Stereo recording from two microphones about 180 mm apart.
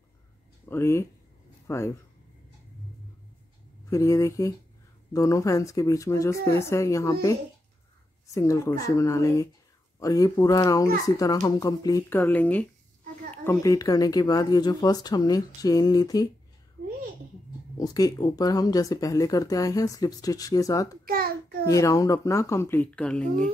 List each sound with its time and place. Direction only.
0.7 s speech: 15° left (ahead or behind)
3.9 s speech: 15° left (ahead or behind)
8.4 s speech: 15° left (ahead or behind)
17.7 s speech: 20° left (ahead or behind)
21.0 s a sound: 55° right (ahead or behind)
21.6 s speech: 20° left (ahead or behind)